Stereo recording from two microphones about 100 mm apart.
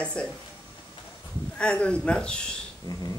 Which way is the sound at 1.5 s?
10° left (ahead or behind).